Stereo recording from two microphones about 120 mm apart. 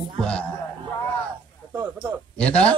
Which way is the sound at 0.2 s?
10° left (ahead or behind).